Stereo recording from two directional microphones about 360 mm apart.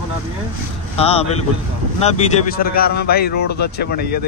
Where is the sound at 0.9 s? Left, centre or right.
Centre.